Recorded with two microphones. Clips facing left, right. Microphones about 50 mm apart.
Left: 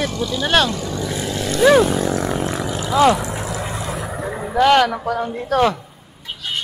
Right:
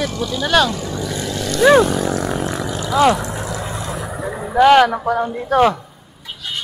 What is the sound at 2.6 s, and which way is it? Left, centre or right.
Roaring cats, centre.